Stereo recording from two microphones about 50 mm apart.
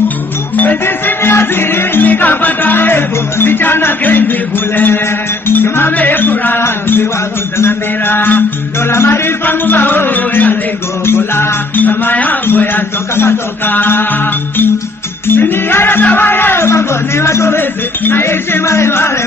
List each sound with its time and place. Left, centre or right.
0.6 s music: left
7.5 s music: left
8.9 s music: left
11.1 s music: left
11.7 s music: left
12.4 s a man's voice: left
13.1 s speech: left
13.7 s music: left
15.2 s music: left
16.1 s speech: left
17.6 s music: left
18.2 s speech: left